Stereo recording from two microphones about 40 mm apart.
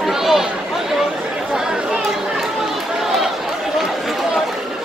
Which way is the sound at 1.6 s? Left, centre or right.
Right.